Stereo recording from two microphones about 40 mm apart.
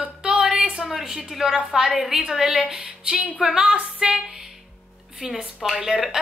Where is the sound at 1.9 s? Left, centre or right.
Right.